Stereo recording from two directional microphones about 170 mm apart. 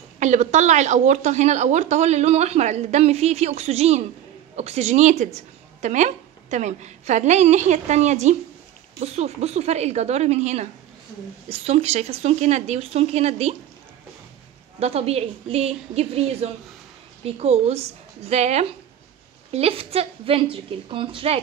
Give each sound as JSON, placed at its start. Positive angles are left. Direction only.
{"t": 0.2, "sound": "a woman's voice", "side_deg": -45}
{"t": 14.8, "sound": "a woman's voice", "side_deg": -35}